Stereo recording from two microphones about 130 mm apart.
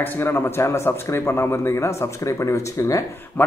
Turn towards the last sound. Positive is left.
turn(degrees=25)  # may be behind; listen again after turning